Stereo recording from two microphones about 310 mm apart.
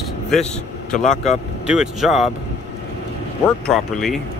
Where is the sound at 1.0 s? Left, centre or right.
Left.